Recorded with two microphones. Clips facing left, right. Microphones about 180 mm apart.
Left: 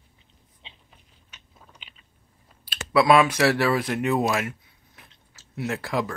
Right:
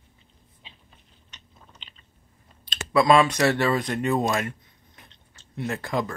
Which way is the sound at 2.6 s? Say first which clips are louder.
Even; 10° left (ahead or behind).